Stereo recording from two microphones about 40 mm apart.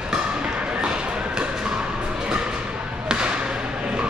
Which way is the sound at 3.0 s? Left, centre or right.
Right.